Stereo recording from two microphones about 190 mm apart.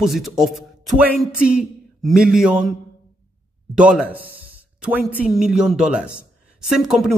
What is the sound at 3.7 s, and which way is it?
Speech, 5° right (ahead or behind).